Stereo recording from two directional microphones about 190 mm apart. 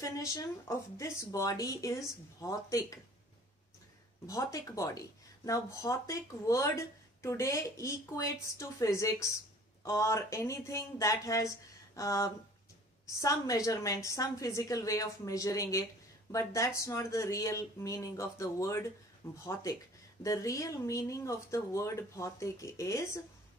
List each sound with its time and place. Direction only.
0.0 s speech: 15° left (ahead or behind)
4.3 s speech: 15° left (ahead or behind)